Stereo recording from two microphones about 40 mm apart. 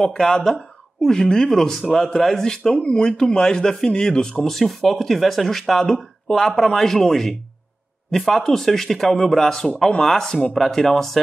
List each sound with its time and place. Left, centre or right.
0.1 s speech: centre